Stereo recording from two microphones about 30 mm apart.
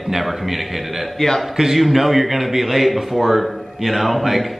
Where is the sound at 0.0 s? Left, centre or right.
Centre.